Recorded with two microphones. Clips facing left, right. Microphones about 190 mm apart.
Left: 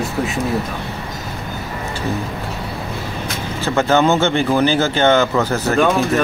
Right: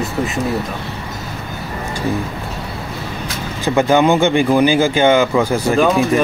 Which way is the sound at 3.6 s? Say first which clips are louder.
Right 2 dB; 15° right (ahead or behind).